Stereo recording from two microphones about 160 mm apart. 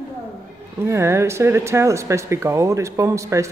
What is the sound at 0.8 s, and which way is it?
Speech, 15° right (ahead or behind).